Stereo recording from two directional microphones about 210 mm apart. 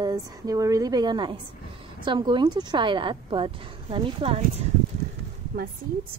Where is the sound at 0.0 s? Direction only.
20° right (ahead or behind).